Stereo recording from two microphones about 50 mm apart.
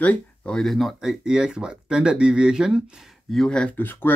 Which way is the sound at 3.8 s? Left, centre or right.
Left.